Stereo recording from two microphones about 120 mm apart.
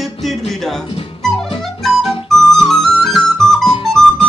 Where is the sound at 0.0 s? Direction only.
Centre (ahead or behind).